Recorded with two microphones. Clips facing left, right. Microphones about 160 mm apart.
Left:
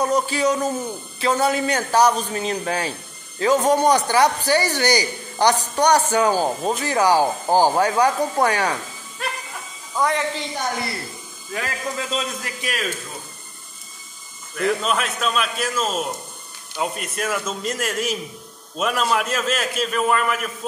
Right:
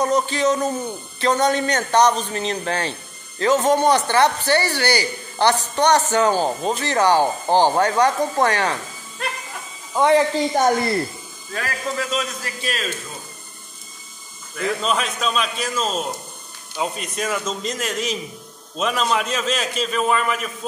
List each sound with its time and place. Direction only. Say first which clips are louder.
0.0 s a man's voice: right 1 dB; 10° left (ahead or behind)
9.9 s a woman's voice: right 6 dB; 25° right (ahead or behind)
10.6 s a woman's voice: right 10 dB; 45° right (ahead or behind)
11.5 s a man's voice: right 1 dB; 20° left (ahead or behind)
14.8 s a man's voice: even; 5° left (ahead or behind)